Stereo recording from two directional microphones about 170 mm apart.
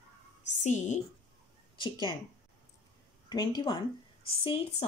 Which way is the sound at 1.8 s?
25° left (ahead or behind).